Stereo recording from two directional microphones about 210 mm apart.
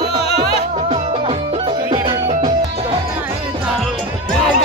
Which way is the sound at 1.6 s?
20° right (ahead or behind).